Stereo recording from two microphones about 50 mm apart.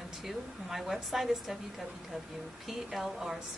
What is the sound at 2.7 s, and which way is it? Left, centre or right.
Speech, centre.